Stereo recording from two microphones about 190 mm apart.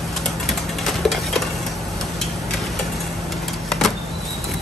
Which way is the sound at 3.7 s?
Centre (ahead or behind).